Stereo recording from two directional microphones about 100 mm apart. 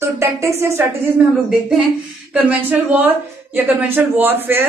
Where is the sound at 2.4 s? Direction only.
15° right (ahead or behind).